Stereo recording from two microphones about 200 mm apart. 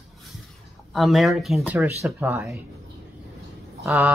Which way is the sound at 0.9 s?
Centre (ahead or behind).